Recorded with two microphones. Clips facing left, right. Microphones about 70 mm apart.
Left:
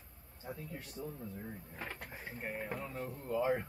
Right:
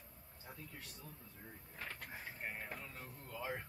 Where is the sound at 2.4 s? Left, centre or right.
Centre.